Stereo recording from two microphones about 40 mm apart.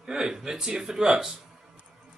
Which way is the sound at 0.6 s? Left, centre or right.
Centre.